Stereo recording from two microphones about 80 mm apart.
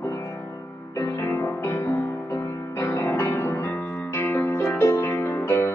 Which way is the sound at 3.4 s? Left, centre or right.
Left.